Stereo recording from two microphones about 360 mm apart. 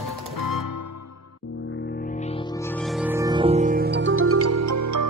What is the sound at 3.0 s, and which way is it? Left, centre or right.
Music, centre.